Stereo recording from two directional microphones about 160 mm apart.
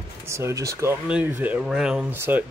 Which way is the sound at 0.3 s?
20° right (ahead or behind).